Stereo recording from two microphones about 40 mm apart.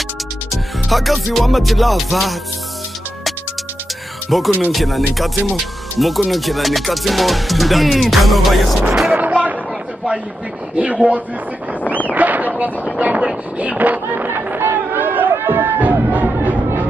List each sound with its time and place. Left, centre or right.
0.5 s music: centre
4.3 s speech: centre
9.1 s a sound: right
10.7 s speech: right
12.1 s a sound: right
12.9 s speech: right
14.1 s chatter: right
15.4 s music: right